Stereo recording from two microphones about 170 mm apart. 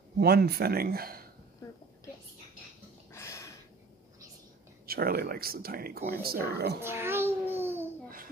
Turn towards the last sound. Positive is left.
turn(degrees=-15)  # may be behind; listen again after turning